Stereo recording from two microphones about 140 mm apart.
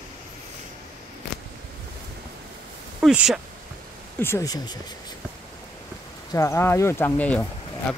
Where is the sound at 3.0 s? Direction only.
5° right (ahead or behind).